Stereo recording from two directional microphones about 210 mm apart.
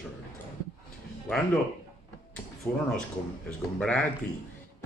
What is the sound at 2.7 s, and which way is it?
Speech, 5° left (ahead or behind).